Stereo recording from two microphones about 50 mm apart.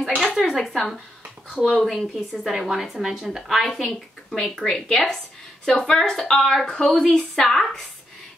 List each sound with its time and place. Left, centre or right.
0.0 s a sound: centre
1.9 s a woman's voice: centre
5.7 s a woman's voice: left
5.9 s a woman's voice: centre
7.4 s a woman's voice: centre